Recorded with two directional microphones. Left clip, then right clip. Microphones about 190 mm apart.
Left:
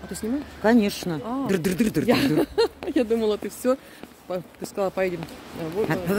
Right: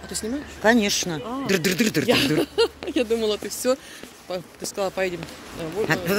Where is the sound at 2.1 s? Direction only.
55° left (ahead or behind).